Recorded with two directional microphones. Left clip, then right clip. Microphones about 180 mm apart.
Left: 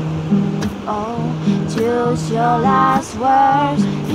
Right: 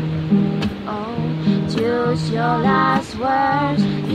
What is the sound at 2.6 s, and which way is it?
Music, 20° left (ahead or behind).